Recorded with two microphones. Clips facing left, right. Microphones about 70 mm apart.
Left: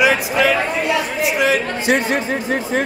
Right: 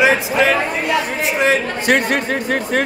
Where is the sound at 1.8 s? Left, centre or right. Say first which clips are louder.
Right 2 dB; right.